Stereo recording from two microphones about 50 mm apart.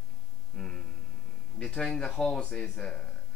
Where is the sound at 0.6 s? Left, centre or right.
Centre.